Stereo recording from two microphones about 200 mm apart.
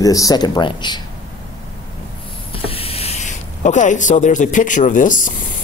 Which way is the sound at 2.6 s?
30° left (ahead or behind).